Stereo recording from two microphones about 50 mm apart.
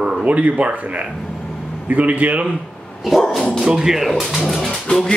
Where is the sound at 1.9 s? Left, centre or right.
Right.